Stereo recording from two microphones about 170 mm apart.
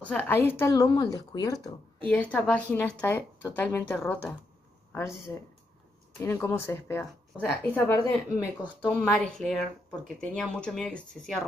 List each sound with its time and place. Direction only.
0.0 s speech: 10° left (ahead or behind)
2.0 s speech: 10° left (ahead or behind)
6.2 s speech: 15° left (ahead or behind)